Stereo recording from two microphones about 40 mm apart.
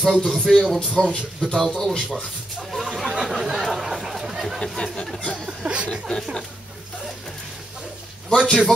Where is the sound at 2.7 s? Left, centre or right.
Centre.